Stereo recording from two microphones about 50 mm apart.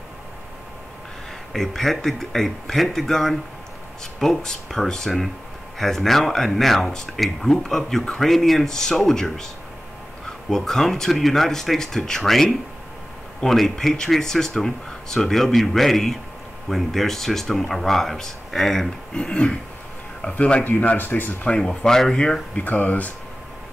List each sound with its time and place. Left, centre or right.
1.5 s speech: centre
10.5 s speech: centre
19.1 s speech: left
20.6 s speech: left
21.5 s speech: centre
22.6 s speech: left